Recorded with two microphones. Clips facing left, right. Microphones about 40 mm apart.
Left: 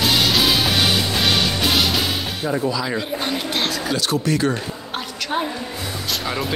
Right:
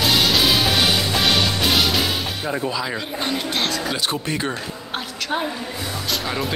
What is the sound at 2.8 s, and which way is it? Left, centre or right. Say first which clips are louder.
Speech: left 2 dB; centre.